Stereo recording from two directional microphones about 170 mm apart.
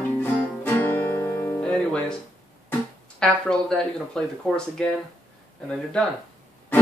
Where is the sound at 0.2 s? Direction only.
10° left (ahead or behind).